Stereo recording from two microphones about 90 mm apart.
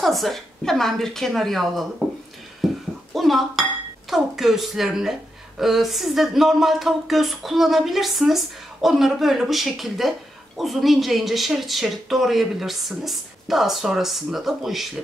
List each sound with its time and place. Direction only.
0.0 s speech: centre (ahead or behind)
2.6 s a sound: centre (ahead or behind)
3.1 s speech: centre (ahead or behind)